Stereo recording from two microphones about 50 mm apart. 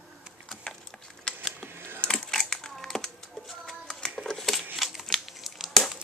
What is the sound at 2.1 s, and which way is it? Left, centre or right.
Typing, centre.